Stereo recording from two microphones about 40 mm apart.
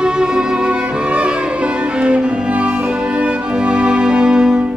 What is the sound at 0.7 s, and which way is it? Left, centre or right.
Music, right.